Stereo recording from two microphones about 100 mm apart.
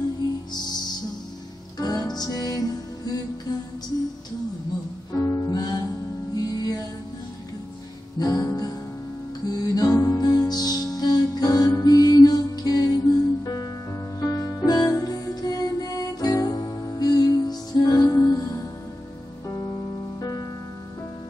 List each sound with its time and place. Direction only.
0.5 s music: 45° left (ahead or behind)
5.1 s music: 35° left (ahead or behind)
8.2 s music: 35° left (ahead or behind)